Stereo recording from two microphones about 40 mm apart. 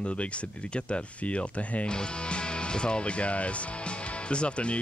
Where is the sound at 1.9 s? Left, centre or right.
Left.